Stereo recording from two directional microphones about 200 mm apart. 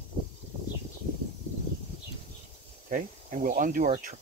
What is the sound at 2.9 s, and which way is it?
Speech, 40° right (ahead or behind).